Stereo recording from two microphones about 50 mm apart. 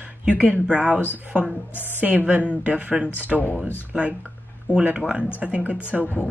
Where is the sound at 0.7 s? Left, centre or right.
Right.